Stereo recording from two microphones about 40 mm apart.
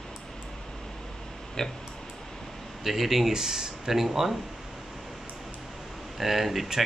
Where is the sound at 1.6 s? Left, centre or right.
Centre.